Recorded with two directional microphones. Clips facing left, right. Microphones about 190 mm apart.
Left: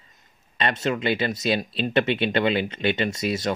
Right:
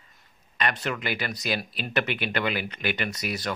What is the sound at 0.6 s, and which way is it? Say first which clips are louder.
Speech: left 5 dB; 25° left (ahead or behind).